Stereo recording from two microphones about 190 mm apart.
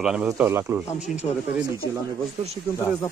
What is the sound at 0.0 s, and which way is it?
Speech, 5° right (ahead or behind).